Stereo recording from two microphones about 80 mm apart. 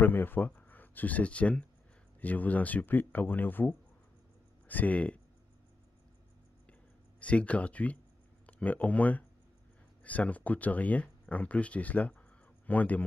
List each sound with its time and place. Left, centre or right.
0.0 s speech: left
7.2 s a man's voice: centre